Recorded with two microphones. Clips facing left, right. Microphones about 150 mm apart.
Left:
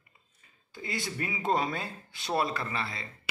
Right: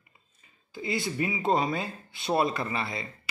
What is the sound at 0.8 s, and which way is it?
Speech, 5° right (ahead or behind).